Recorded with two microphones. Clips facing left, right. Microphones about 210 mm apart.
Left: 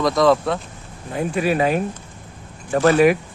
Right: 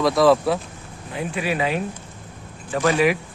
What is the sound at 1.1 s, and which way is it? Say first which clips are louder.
Speech: left 5 dB; 45° left (ahead or behind).